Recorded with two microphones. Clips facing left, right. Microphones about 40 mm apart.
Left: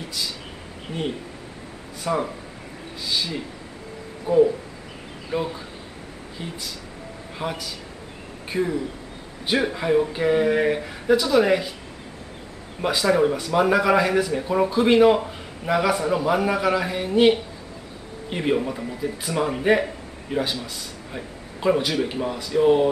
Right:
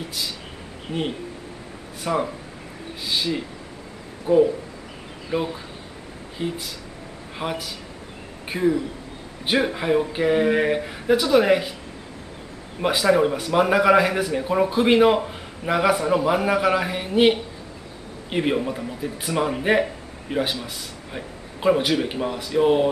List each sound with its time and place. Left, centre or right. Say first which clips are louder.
0.9 s speech: right 3 dB; right
2.1 s a man's voice: right 1 dB; centre
4.3 s speech: right 1 dB; right
5.3 s a man's voice: right 1 dB; centre
12.8 s a man's voice: right 1 dB; centre
18.6 s a man's voice: even; centre